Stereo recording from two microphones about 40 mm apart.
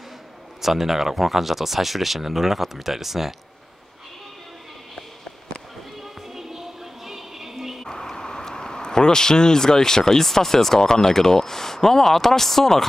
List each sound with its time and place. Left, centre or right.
0.6 s speech: centre
6.0 s music: centre
7.8 s speech: centre